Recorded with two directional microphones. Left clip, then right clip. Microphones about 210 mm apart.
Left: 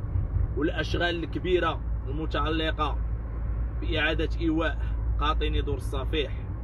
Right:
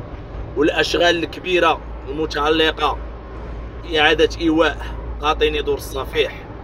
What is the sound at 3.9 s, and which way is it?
Speech, 20° right (ahead or behind).